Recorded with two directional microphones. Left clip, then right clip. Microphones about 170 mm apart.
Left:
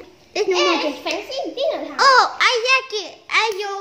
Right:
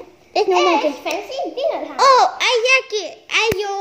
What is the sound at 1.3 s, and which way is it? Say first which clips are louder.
Speech: right 1 dB; 40° left (ahead or behind).